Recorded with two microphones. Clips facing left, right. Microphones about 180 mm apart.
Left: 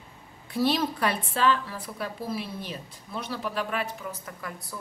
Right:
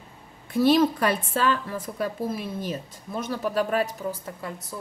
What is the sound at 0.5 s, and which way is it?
A woman's voice, 50° right (ahead or behind).